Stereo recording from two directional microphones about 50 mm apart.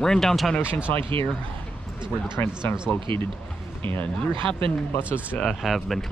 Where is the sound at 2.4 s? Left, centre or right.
Left.